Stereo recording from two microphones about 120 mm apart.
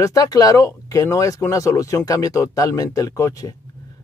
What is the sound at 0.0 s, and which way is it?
Speech, 30° left (ahead or behind).